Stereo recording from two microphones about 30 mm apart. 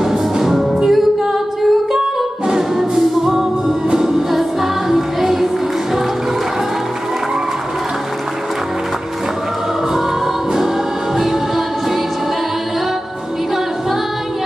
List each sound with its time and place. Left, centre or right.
0.0 s music: centre
2.0 s music: right
2.8 s music: centre